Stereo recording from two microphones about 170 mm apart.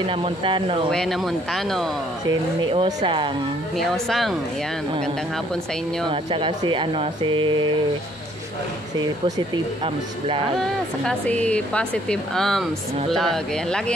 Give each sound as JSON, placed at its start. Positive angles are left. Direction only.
{"t": 0.1, "sound": "speech", "side_deg": -30}
{"t": 0.9, "sound": "speech", "side_deg": 0}
{"t": 2.2, "sound": "speech", "side_deg": -30}
{"t": 3.7, "sound": "speech", "side_deg": 0}
{"t": 6.0, "sound": "speech", "side_deg": -30}
{"t": 10.6, "sound": "speech", "side_deg": 5}